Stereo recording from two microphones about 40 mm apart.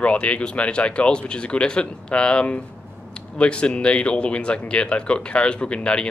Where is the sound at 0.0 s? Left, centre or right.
Left.